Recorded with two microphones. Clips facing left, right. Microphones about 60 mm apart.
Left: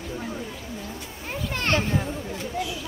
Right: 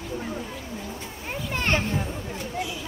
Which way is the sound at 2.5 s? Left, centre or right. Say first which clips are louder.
Left 1 dB; centre.